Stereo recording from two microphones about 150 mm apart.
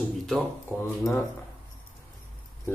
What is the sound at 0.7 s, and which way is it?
Speech, 20° left (ahead or behind).